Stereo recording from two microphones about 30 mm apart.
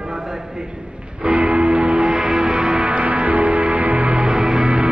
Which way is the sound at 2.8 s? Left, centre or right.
Right.